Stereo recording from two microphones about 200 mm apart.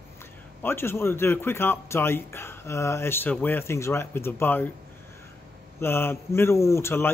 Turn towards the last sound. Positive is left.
turn(degrees=10)  # may be behind; listen again after turning